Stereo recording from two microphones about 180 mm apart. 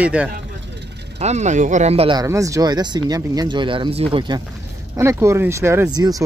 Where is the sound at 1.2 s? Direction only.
40° right (ahead or behind).